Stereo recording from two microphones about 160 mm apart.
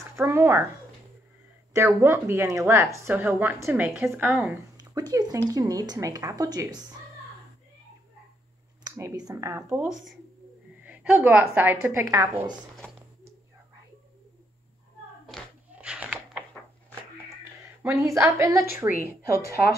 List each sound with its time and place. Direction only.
0.1 s speech: 15° right (ahead or behind)
1.9 s a woman's voice: 15° right (ahead or behind)
4.7 s speech: 25° right (ahead or behind)
8.8 s a woman's voice: 20° right (ahead or behind)
15.2 s a sound: 5° right (ahead or behind)
17.9 s a woman's voice: 20° right (ahead or behind)